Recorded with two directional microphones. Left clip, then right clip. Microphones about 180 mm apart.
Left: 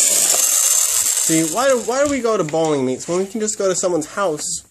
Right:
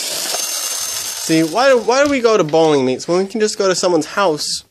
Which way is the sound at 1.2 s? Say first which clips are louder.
Right 5 dB; 30° right (ahead or behind).